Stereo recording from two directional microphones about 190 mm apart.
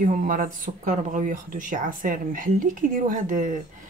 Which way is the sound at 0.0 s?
45° right (ahead or behind).